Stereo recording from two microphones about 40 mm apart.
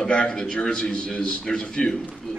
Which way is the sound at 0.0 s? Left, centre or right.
Left.